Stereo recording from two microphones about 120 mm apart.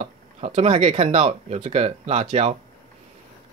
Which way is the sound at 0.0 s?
65° right (ahead or behind).